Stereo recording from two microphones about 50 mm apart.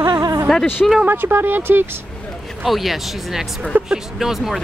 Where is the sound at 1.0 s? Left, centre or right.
Right.